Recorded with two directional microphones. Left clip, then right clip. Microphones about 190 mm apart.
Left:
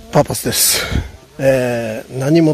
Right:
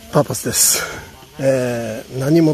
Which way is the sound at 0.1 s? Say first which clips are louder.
Left 3 dB; centre (ahead or behind).